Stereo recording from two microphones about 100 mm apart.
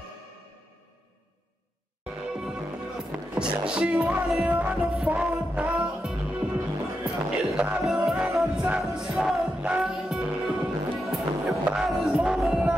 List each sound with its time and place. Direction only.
2.3 s music: 5° right (ahead or behind)